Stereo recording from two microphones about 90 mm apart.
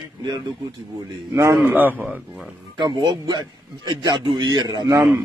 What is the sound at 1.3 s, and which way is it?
Speech, 30° right (ahead or behind).